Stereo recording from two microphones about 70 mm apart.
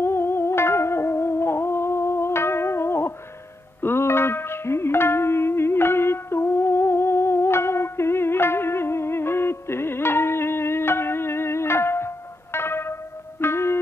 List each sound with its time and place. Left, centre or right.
0.0 s music: left